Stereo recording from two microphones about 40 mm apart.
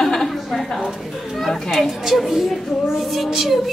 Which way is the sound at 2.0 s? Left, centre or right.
Centre.